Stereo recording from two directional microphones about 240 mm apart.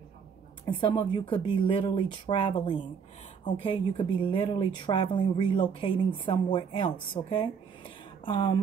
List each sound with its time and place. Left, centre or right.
0.7 s a woman's voice: centre